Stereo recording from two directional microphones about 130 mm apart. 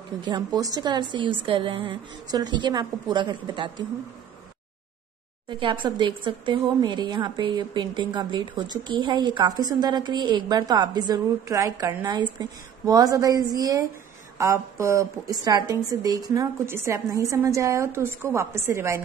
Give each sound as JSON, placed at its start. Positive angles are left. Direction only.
{"t": 0.2, "sound": "speech", "side_deg": -30}
{"t": 5.5, "sound": "a woman's voice", "side_deg": -40}